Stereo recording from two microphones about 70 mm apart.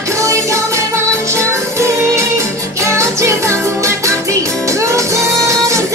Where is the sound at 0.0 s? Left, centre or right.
Right.